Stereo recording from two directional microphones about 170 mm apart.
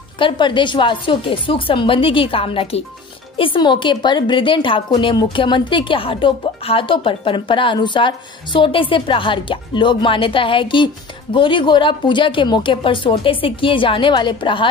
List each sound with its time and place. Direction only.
0.2 s a woman's voice: 30° left (ahead or behind)